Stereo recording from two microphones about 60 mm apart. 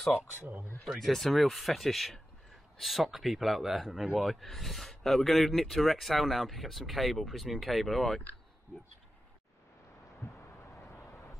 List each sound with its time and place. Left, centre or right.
0.9 s speech: centre
10.2 s a sound: left
10.8 s vehicle: left